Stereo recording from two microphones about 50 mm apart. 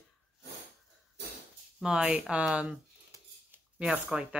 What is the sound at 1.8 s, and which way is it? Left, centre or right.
Speech, centre.